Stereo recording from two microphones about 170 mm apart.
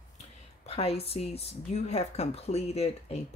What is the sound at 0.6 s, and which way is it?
Speech, 35° left (ahead or behind).